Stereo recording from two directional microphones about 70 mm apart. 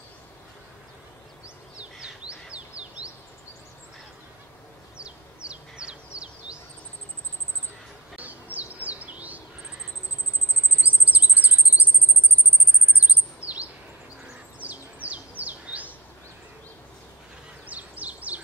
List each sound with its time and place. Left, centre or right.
2.5 s bird: centre
4.9 s bird: centre
8.5 s bird vocalization: right
10.8 s chirp: right
12.9 s chirp: right
14.6 s bird: right
17.6 s bird: right